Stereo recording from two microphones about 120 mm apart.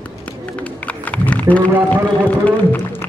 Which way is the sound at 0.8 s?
10° left (ahead or behind).